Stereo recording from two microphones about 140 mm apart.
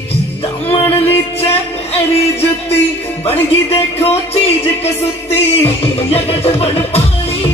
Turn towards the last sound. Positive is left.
turn(degrees=45)  # may be behind; listen again after turning